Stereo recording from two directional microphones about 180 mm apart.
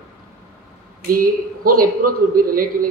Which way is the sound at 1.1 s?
55° right (ahead or behind).